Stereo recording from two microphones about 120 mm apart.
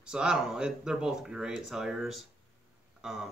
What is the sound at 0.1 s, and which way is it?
Speech, 5° right (ahead or behind).